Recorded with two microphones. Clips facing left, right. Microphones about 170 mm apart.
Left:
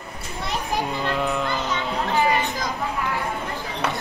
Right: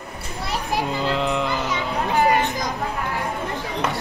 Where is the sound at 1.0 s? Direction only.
20° right (ahead or behind).